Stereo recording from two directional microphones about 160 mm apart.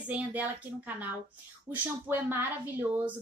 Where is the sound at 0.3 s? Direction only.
10° right (ahead or behind).